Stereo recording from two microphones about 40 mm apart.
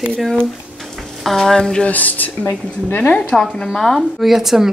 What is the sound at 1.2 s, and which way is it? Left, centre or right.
Speech, centre.